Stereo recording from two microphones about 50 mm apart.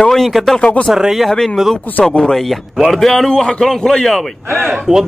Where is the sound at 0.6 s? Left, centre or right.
Left.